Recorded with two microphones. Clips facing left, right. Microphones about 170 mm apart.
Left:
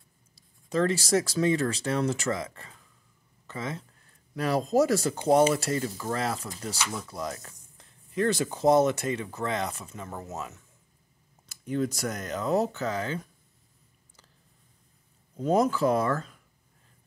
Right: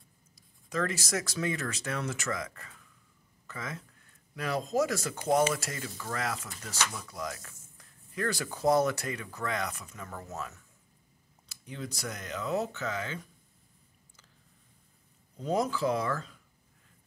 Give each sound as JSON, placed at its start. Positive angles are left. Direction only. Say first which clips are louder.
{"t": 0.7, "sound": "speech", "louder": "left 7 dB", "side_deg": 30}
{"t": 11.6, "sound": "speech", "louder": "left 10 dB", "side_deg": 50}
{"t": 15.3, "sound": "speech", "louder": "left 6 dB", "side_deg": 50}